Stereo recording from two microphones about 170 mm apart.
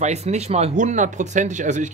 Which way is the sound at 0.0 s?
40° right (ahead or behind).